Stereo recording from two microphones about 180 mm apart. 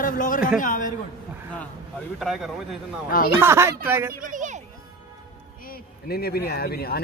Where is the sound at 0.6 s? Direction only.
45° left (ahead or behind).